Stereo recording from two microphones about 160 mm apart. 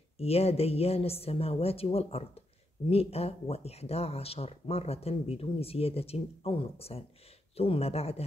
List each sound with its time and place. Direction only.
0.2 s speech: 40° left (ahead or behind)